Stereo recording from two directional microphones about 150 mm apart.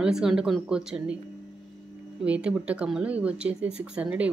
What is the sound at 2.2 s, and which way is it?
Speech, 10° right (ahead or behind).